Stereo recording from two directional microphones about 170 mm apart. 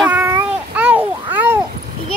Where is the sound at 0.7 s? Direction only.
10° right (ahead or behind).